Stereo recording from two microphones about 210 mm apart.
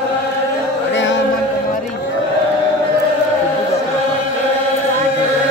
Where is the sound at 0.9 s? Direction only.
60° left (ahead or behind).